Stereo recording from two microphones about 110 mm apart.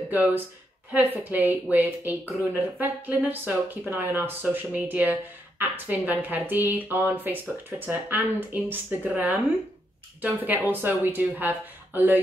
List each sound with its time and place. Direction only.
0.1 s a woman's voice: 15° right (ahead or behind)